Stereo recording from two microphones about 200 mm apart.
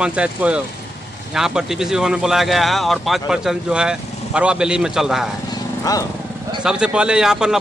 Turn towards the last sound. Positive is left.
turn(degrees=-5)  # may be behind; listen again after turning